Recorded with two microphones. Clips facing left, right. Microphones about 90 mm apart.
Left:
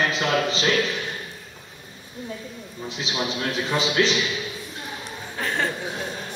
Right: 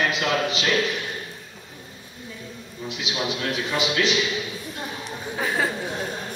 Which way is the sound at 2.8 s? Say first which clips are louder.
Even; 35° left (ahead or behind).